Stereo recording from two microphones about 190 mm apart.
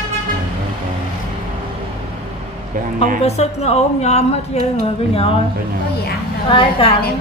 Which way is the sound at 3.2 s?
35° left (ahead or behind).